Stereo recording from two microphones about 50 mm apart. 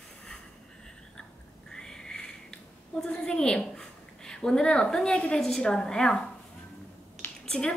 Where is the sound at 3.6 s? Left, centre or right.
Centre.